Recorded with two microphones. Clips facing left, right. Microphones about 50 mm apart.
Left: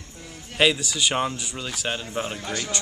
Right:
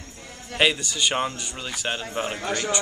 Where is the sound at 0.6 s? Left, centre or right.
Centre.